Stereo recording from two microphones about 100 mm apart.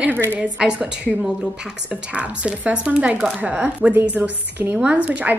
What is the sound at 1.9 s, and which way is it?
Speech, 10° right (ahead or behind).